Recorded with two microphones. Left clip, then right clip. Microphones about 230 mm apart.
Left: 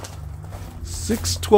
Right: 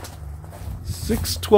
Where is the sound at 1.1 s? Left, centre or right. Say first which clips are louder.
Even; centre.